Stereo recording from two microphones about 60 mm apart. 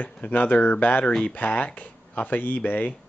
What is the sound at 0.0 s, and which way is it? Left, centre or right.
Speech, left.